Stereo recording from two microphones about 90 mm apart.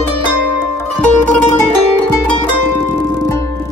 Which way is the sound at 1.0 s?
20° left (ahead or behind).